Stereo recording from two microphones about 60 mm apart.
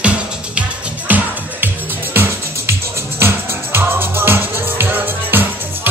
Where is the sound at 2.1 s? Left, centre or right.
Right.